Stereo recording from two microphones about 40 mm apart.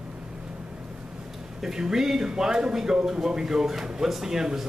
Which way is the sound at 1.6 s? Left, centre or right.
Centre.